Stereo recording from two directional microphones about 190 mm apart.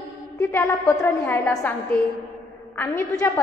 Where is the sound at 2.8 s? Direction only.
15° left (ahead or behind).